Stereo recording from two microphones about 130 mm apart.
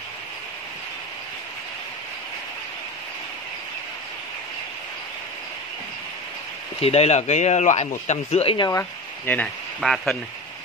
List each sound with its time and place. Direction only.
6.8 s speech: 55° left (ahead or behind)
8.5 s speech: 25° left (ahead or behind)
9.2 s speech: 10° left (ahead or behind)
9.8 s speech: centre (ahead or behind)